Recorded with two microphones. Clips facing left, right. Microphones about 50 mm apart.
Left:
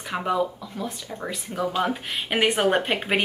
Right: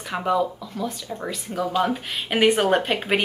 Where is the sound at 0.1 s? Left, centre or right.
Centre.